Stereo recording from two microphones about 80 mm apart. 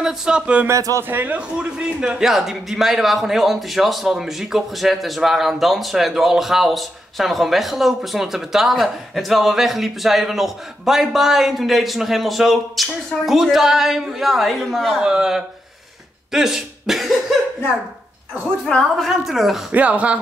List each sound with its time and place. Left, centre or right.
0.0 s music: centre
0.7 s speech: right
1.0 s a man's voice: right
1.8 s speech: centre
18.7 s a woman's voice: centre
19.0 s speech: centre
19.7 s music: centre